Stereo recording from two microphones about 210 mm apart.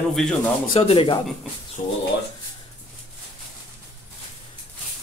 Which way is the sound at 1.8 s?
40° left (ahead or behind).